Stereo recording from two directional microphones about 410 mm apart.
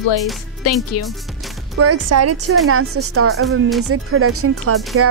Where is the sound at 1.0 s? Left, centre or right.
Left.